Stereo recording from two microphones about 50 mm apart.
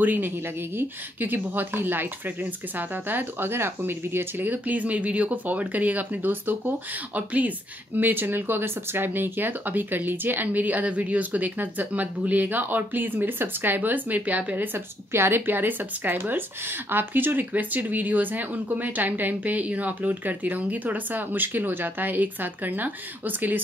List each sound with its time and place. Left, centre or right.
0.0 s speech: right